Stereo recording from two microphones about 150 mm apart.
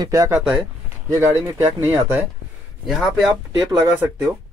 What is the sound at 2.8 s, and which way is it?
Speech, centre (ahead or behind).